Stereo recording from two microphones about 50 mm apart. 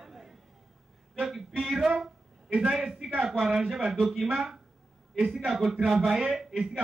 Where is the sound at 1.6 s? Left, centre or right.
Centre.